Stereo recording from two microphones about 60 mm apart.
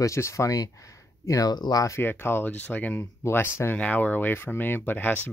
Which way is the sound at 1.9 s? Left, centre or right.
Left.